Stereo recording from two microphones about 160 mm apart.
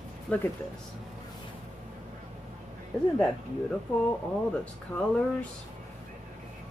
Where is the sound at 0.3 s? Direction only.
5° left (ahead or behind).